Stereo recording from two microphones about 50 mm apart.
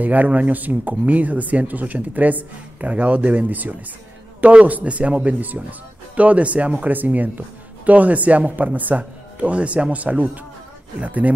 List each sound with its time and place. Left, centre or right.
0.0 s speech: right